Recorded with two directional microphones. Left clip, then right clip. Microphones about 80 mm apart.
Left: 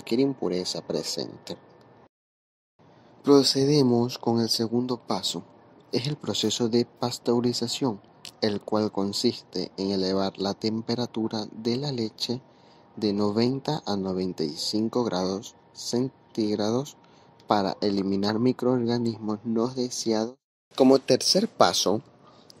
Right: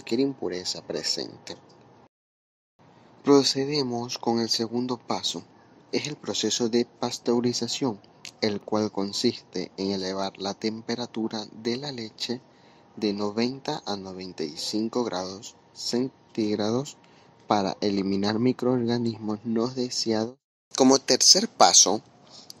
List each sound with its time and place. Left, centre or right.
0.0 s speech: left
3.3 s speech: left
3.8 s speech: centre
20.7 s speech: left
21.8 s a sound: left